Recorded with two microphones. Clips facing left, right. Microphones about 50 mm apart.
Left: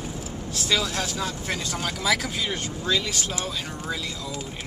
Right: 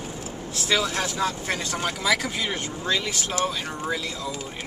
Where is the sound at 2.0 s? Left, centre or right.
Centre.